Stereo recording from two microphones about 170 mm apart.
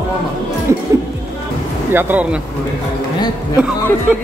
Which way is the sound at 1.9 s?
10° right (ahead or behind).